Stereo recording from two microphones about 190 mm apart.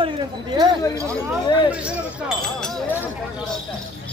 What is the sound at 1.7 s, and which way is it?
Speech, 5° right (ahead or behind).